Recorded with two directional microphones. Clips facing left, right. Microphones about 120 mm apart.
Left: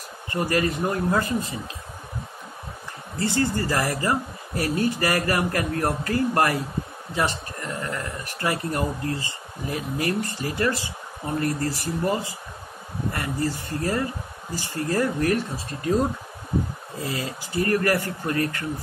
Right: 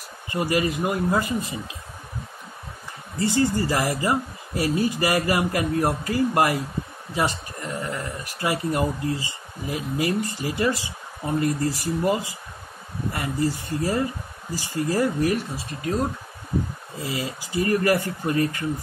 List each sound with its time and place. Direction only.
0.3 s speech: 15° right (ahead or behind)
3.2 s speech: 15° right (ahead or behind)
17.1 s speech: 15° right (ahead or behind)